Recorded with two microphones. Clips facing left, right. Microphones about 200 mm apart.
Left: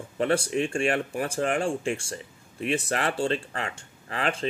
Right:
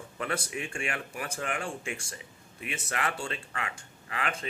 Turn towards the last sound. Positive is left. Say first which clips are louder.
# left 6 dB
turn(degrees=30)  # may be behind; listen again after turning